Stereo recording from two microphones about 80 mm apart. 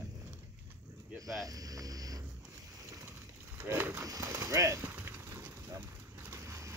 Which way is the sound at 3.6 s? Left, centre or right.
Right.